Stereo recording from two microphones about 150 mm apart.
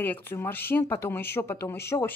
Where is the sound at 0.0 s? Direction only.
15° left (ahead or behind).